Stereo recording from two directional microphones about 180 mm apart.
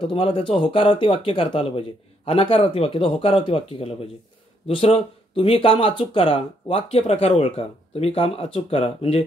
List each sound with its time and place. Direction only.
0.0 s speech: 30° left (ahead or behind)